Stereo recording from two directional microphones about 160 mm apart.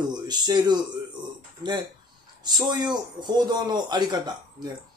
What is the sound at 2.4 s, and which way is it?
Speech, 25° right (ahead or behind).